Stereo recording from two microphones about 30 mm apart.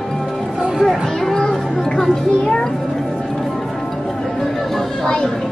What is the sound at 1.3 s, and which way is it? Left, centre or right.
Speech, centre.